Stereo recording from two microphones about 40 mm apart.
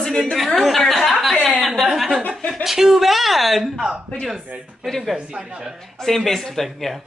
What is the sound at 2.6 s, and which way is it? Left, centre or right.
A woman's voice, centre.